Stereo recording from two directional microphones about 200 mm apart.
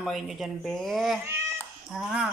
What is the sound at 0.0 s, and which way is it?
Speech, centre (ahead or behind).